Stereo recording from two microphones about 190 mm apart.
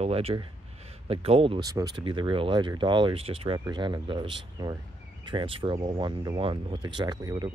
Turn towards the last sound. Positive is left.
turn(degrees=-20)  # may be behind; listen again after turning